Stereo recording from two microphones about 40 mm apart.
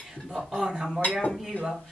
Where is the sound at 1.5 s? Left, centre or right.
Left.